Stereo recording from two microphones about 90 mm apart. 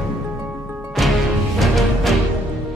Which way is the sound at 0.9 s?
Centre (ahead or behind).